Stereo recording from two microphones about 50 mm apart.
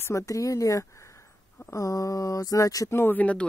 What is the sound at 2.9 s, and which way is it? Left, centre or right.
Speech, left.